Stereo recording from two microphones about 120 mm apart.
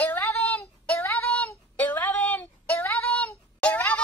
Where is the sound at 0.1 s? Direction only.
20° left (ahead or behind).